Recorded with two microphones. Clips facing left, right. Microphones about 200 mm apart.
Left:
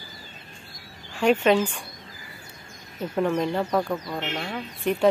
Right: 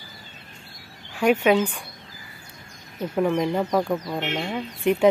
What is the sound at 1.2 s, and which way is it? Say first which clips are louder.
Speech: right 1 dB; 10° right (ahead or behind).